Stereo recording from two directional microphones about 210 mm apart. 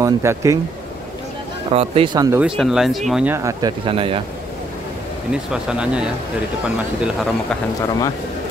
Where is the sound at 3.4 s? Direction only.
20° right (ahead or behind).